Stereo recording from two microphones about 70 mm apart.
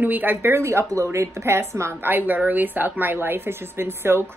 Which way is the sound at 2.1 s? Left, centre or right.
Right.